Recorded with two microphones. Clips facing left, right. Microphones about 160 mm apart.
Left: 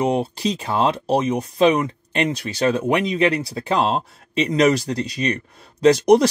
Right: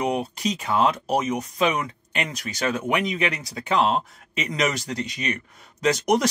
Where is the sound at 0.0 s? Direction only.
30° left (ahead or behind).